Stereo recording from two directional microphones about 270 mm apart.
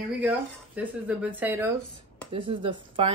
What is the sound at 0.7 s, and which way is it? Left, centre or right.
Speech, centre.